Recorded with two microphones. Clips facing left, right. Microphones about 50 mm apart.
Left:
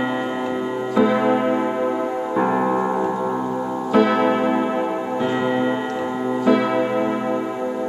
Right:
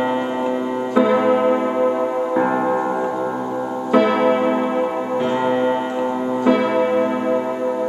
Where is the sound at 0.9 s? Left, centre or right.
Centre.